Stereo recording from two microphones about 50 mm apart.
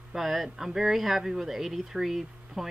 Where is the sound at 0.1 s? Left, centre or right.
Centre.